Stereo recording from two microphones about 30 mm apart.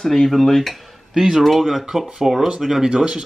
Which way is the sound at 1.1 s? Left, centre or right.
Centre.